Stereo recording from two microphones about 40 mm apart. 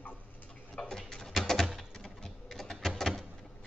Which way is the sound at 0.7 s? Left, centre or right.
Centre.